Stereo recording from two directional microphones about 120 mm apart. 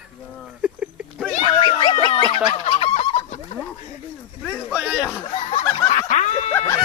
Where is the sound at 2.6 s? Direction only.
65° left (ahead or behind).